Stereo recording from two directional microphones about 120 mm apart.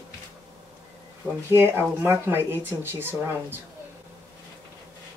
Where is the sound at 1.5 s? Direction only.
20° right (ahead or behind).